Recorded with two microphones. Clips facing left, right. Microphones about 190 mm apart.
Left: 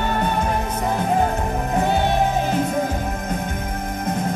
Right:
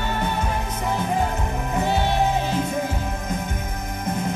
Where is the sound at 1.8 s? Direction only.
50° left (ahead or behind).